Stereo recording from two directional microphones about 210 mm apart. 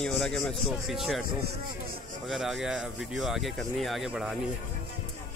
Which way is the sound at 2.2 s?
Centre (ahead or behind).